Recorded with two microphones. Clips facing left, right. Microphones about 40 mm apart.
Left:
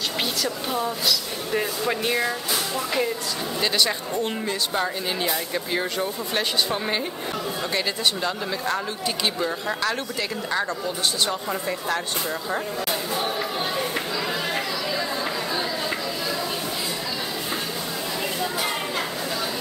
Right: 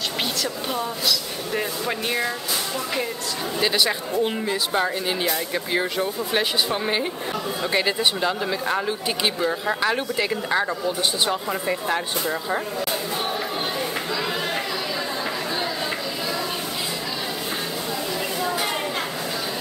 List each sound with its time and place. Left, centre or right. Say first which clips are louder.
0.4 s speech: even; centre
3.6 s speech: right 2 dB; centre